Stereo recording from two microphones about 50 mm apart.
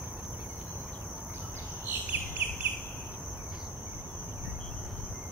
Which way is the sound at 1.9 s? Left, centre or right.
Right.